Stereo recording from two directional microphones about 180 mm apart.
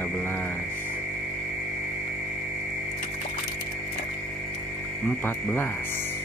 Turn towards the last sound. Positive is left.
turn(degrees=10)  # may be behind; listen again after turning